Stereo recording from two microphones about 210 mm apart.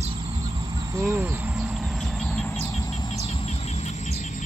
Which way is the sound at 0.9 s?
10° right (ahead or behind).